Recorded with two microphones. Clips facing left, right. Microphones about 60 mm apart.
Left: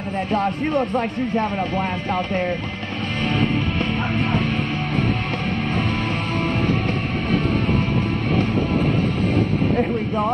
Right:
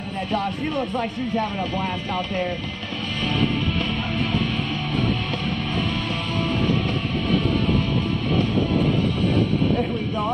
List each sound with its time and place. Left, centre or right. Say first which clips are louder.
0.3 s speech: left 4 dB; left